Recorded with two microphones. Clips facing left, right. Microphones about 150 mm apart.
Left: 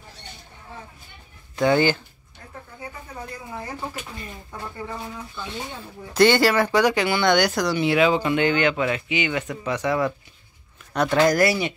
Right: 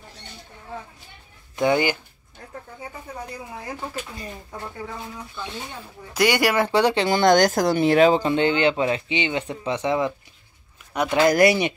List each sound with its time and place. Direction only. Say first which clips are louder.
1.6 s speech: left 1 dB; 15° right (ahead or behind)
6.1 s speech: left 3 dB; 10° right (ahead or behind); by 7.2 s 30° right (ahead or behind)
7.2 s speech: right 3 dB; 40° right (ahead or behind); by 10.1 s 20° right (ahead or behind)
10.9 s speech: even; 10° right (ahead or behind)